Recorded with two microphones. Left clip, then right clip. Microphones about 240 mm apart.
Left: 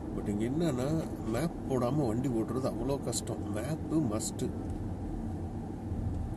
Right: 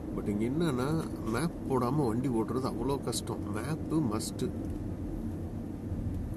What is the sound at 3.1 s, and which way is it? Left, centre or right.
Speech, left.